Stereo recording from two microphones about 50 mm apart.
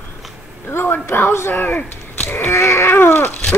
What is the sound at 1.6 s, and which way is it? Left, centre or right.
Speech, left.